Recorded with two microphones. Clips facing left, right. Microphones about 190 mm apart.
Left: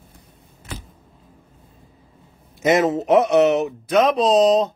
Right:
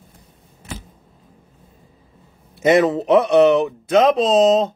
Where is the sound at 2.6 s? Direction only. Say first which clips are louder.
Right 3 dB; 30° right (ahead or behind).